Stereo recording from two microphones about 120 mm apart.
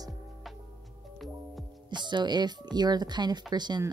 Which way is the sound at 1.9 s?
40° right (ahead or behind).